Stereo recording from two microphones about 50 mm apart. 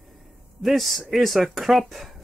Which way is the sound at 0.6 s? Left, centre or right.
Centre.